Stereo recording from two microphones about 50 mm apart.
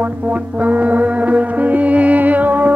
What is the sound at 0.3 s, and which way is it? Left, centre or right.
Music, right.